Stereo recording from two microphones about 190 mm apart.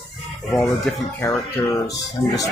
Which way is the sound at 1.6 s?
15° left (ahead or behind).